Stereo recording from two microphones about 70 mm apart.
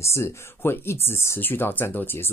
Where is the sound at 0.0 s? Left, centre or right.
Left.